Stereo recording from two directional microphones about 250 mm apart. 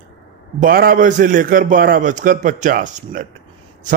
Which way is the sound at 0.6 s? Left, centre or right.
Right.